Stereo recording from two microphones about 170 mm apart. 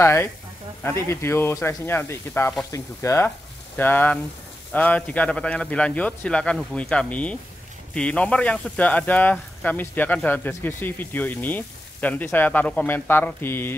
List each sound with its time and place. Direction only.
0.0 s speech: 15° left (ahead or behind)